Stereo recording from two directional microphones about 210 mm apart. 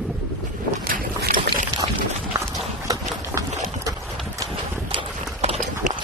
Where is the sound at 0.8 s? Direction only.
45° right (ahead or behind).